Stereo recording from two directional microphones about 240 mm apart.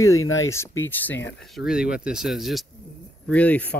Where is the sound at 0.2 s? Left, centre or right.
Left.